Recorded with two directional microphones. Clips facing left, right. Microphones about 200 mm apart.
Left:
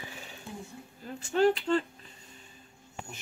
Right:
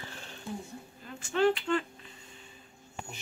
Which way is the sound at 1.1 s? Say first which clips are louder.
Left 2 dB; 40° left (ahead or behind).